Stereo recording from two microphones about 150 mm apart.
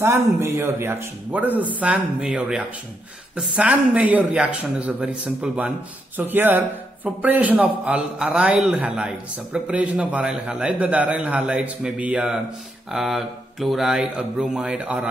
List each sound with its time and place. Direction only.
0.0 s a man's voice: 15° right (ahead or behind)